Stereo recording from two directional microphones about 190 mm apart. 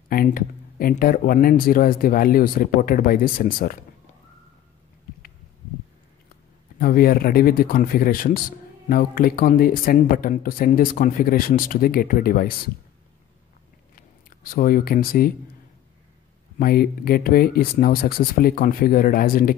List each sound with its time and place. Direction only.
0.1 s speech: 50° left (ahead or behind)
6.8 s speech: 50° left (ahead or behind)
14.5 s speech: 50° left (ahead or behind)
16.5 s speech: 50° left (ahead or behind)